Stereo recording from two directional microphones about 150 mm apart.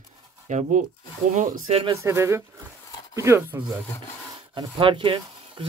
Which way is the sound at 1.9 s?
20° right (ahead or behind).